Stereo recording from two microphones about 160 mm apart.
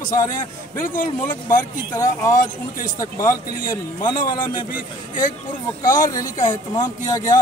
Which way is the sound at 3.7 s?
30° left (ahead or behind).